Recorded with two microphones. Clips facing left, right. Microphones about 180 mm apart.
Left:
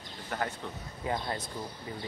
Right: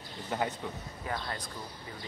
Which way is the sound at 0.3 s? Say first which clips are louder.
Right 2 dB; 20° right (ahead or behind).